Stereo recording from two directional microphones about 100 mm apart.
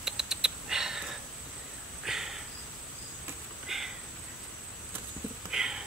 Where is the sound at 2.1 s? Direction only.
5° right (ahead or behind).